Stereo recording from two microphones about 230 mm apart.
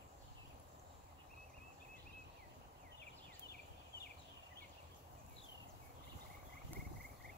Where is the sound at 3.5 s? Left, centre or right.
Left.